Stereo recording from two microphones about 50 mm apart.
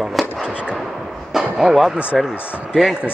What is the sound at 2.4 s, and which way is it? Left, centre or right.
Fireworks, right.